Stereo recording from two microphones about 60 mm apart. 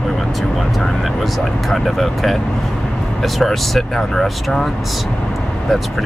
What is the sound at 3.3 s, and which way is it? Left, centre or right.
Speech, centre.